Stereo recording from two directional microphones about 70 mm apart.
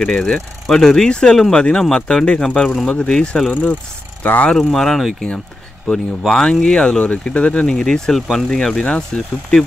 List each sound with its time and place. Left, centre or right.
0.0 s speech: centre
4.2 s speech: left
4.5 s speech: centre